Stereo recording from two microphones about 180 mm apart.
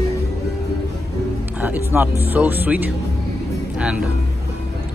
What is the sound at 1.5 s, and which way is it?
Speech, 10° right (ahead or behind).